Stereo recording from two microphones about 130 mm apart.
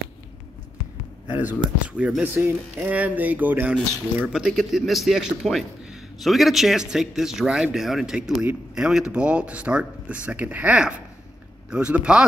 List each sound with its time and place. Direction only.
1.2 s speech: 10° right (ahead or behind)